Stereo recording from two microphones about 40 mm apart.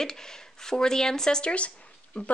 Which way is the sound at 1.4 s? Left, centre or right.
Left.